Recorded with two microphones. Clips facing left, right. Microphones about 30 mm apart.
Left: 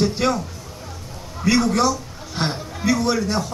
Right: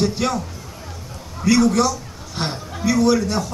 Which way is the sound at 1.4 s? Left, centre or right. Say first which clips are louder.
Right 2 dB; centre.